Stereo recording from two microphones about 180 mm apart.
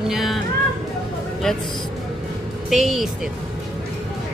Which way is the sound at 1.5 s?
5° left (ahead or behind).